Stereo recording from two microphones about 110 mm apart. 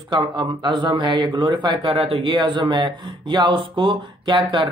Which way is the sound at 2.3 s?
45° right (ahead or behind).